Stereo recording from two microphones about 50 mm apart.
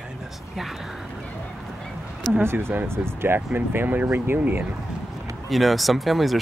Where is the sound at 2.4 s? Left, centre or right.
Right.